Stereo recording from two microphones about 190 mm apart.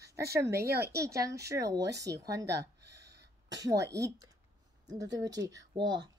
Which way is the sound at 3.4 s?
20° right (ahead or behind).